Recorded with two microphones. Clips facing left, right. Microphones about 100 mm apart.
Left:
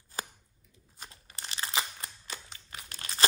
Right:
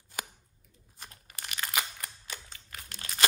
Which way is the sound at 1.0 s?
25° left (ahead or behind).